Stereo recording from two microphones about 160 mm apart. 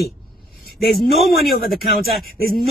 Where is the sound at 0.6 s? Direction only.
75° left (ahead or behind).